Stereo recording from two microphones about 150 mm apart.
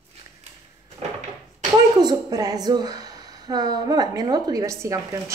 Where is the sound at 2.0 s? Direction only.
25° right (ahead or behind).